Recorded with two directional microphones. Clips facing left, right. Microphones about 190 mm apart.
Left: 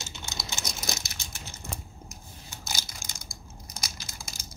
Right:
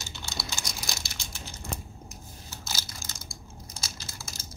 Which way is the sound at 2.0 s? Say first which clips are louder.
Right 1 dB; 5° right (ahead or behind).